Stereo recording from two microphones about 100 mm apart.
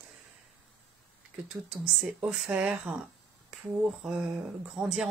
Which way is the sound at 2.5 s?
15° right (ahead or behind).